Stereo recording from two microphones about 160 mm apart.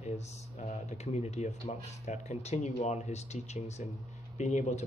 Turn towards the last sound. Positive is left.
turn(degrees=45)  # may be behind; listen again after turning